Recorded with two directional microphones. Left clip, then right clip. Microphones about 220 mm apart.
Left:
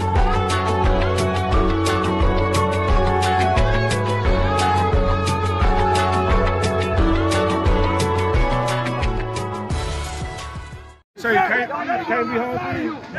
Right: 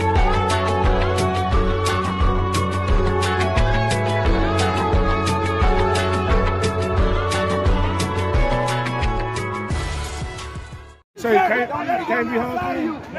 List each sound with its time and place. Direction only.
0.0 s music: centre (ahead or behind)
11.2 s chatter: 45° right (ahead or behind)